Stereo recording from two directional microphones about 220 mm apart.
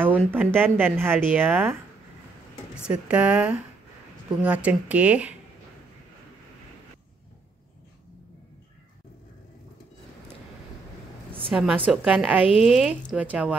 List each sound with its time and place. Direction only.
0.3 s speech: 10° right (ahead or behind)
11.5 s speech: 5° right (ahead or behind)